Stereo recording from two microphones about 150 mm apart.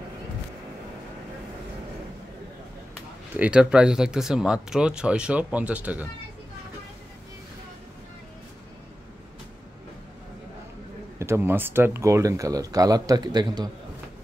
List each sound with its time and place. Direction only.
3.3 s speech: 10° right (ahead or behind)
11.1 s speech: 20° right (ahead or behind)